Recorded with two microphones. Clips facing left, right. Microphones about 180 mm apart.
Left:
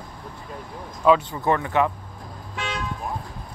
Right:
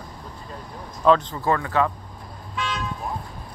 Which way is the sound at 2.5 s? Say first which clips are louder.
Right 2 dB; 55° left (ahead or behind).